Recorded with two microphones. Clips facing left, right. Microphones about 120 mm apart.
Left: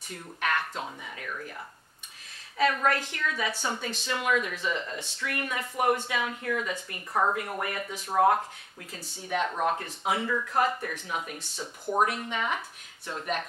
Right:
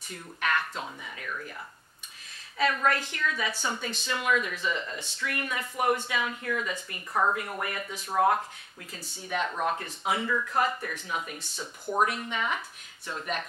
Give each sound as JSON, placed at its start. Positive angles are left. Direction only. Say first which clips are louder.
{"t": 0.1, "sound": "speech", "louder": "even", "side_deg": 45}
{"t": 2.5, "sound": "speech", "louder": "left 1 dB", "side_deg": 40}
{"t": 3.5, "sound": "speech", "louder": "left 1 dB", "side_deg": 30}
{"t": 3.9, "sound": "speech", "louder": "even", "side_deg": 55}
{"t": 11.5, "sound": "speech", "louder": "left 1 dB", "side_deg": 25}
{"t": 12.1, "sound": "speech", "louder": "left 1 dB", "side_deg": 45}